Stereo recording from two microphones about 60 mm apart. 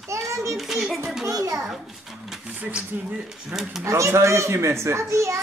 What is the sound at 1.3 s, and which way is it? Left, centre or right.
Speech, right.